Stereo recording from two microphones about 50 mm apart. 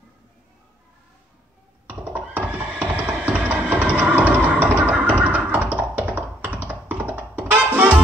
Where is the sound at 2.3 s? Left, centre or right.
Right.